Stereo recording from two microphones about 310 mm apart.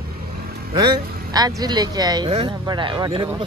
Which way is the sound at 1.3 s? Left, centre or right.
Centre.